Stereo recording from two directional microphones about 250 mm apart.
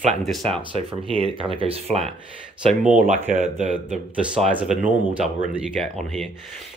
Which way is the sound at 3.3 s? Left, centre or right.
Right.